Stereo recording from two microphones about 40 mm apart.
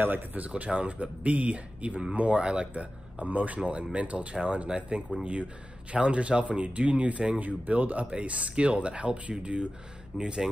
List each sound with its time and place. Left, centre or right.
0.0 s speech: right
0.5 s speech: right
4.6 s speech: right